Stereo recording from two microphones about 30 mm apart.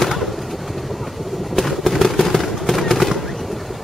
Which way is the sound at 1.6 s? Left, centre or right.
Centre.